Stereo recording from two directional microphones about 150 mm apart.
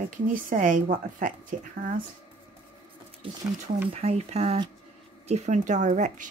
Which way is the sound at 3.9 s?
45° right (ahead or behind).